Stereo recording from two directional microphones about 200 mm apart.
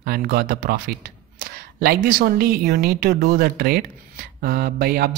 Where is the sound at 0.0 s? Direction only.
50° right (ahead or behind).